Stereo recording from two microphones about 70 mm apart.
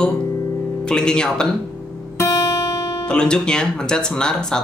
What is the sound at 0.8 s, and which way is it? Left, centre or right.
Speech, centre.